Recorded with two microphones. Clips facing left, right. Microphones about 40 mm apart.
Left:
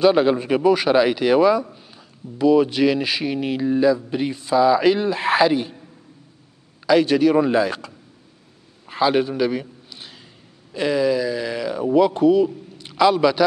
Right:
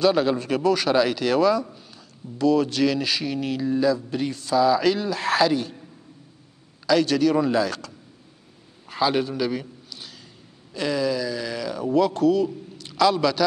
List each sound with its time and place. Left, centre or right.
0.0 s speech: left
6.9 s speech: left
8.8 s a sound: centre
10.7 s speech: centre